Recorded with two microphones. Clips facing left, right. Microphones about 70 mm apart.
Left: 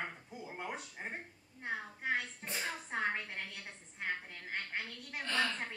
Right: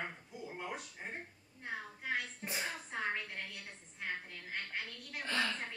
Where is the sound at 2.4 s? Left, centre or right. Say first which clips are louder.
Even; centre.